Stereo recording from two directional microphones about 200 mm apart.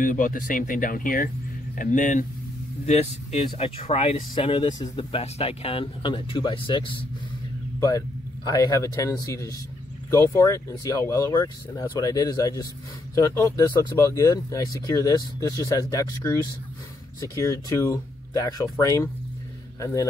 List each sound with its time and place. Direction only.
0.0 s speech: 40° left (ahead or behind); by 7.1 s 25° left (ahead or behind)
8.5 s speech: 15° left (ahead or behind)